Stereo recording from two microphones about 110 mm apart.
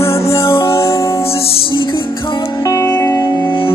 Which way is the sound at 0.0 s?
25° left (ahead or behind).